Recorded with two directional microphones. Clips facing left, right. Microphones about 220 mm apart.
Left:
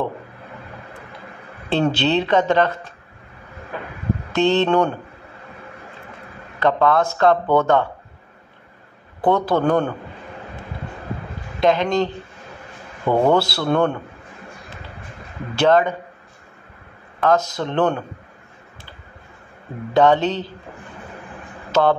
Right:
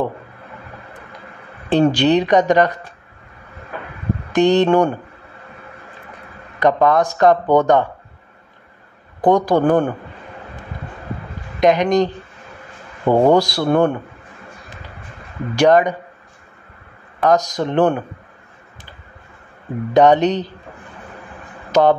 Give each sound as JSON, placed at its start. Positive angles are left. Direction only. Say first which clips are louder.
{"t": 1.7, "sound": "speech", "louder": "right 5 dB", "side_deg": -15}
{"t": 4.3, "sound": "speech", "louder": "right 4 dB", "side_deg": -15}
{"t": 6.6, "sound": "speech", "louder": "right 3 dB", "side_deg": -15}
{"t": 9.2, "sound": "speech", "louder": "right 4 dB", "side_deg": -15}
{"t": 11.6, "sound": "speech", "louder": "right 3 dB", "side_deg": -15}
{"t": 13.1, "sound": "speech", "louder": "right 4 dB", "side_deg": -15}
{"t": 15.5, "sound": "speech", "louder": "right 3 dB", "side_deg": -15}
{"t": 17.2, "sound": "speech", "louder": "right 2 dB", "side_deg": -15}
{"t": 19.9, "sound": "speech", "louder": "right 3 dB", "side_deg": -15}
{"t": 21.7, "sound": "speech", "louder": "right 3 dB", "side_deg": -15}